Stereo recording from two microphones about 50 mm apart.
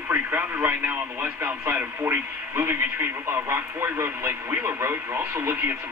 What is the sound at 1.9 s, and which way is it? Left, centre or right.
Speech, right.